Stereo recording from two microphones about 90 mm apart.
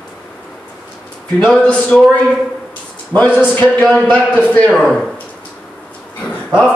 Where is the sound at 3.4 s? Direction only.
20° left (ahead or behind).